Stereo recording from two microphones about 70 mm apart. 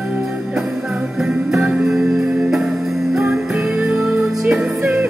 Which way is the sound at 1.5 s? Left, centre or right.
Centre.